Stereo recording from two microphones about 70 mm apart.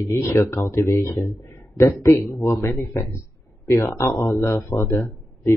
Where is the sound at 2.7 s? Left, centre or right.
Left.